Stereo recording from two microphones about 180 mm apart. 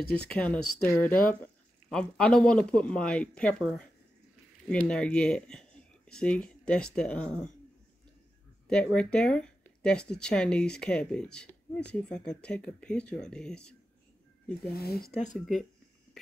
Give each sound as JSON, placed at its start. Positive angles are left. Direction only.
{"t": 0.1, "sound": "speech", "side_deg": 5}
{"t": 8.6, "sound": "speech", "side_deg": 5}
{"t": 14.7, "sound": "speech", "side_deg": 60}
{"t": 15.3, "sound": "speech", "side_deg": 0}